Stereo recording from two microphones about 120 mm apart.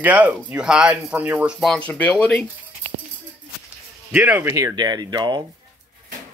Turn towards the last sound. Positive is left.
turn(degrees=-35)  # may be behind; listen again after turning